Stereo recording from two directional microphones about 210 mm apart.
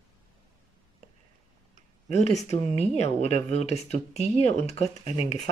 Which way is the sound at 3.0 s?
30° left (ahead or behind).